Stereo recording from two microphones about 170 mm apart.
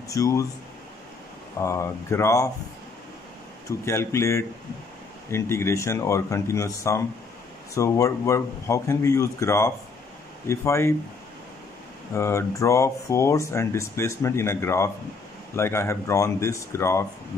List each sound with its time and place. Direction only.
0.1 s speech: 20° left (ahead or behind)
1.6 s speech: 15° left (ahead or behind)
3.6 s speech: 15° left (ahead or behind)
12.1 s speech: 15° left (ahead or behind)